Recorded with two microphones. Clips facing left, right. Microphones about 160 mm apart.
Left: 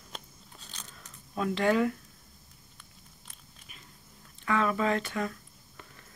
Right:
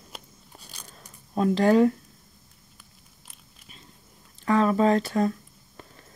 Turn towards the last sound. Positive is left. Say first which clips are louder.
# right 8 dB
turn(degrees=-35)  # may be behind; listen again after turning